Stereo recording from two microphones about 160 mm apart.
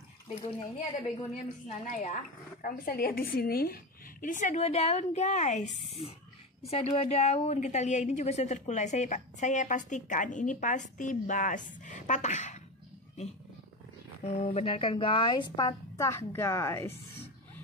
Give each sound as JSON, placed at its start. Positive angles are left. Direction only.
{"t": 0.3, "sound": "a woman's voice", "side_deg": 40}
{"t": 2.6, "sound": "a woman's voice", "side_deg": 60}
{"t": 14.2, "sound": "a woman's voice", "side_deg": 40}